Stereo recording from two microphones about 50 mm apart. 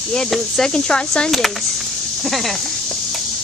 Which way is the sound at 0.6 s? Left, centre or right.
Centre.